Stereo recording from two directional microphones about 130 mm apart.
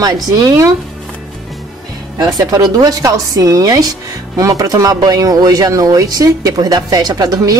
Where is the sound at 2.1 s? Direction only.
30° right (ahead or behind).